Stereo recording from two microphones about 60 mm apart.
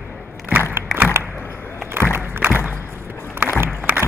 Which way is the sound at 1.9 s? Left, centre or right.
Right.